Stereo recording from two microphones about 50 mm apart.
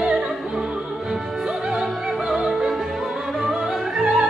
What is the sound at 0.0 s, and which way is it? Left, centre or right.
Opera, centre.